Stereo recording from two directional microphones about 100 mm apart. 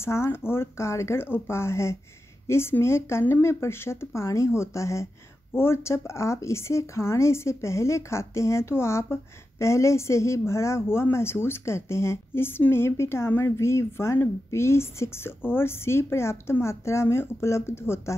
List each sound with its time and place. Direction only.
0.0 s speech: 25° left (ahead or behind)